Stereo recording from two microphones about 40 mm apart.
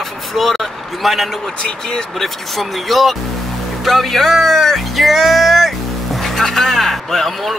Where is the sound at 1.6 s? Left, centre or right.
Left.